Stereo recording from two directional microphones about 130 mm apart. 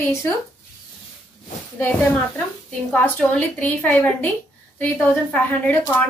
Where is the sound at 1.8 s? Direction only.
15° left (ahead or behind).